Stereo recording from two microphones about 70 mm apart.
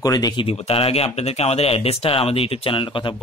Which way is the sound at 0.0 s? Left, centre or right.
Left.